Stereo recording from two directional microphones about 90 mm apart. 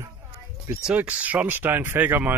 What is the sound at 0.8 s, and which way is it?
Speech, 15° right (ahead or behind).